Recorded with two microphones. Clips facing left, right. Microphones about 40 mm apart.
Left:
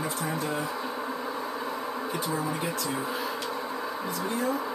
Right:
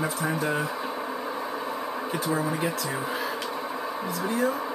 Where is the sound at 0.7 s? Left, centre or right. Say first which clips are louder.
Right 1 dB; centre.